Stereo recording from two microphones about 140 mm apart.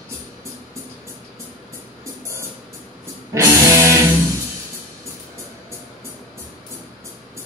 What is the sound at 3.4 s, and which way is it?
Music, 20° right (ahead or behind).